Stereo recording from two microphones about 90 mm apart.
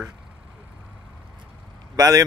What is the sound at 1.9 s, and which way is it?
Speech, 45° right (ahead or behind).